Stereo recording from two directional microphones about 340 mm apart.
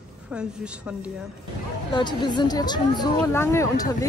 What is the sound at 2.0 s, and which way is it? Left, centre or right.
Speech, centre.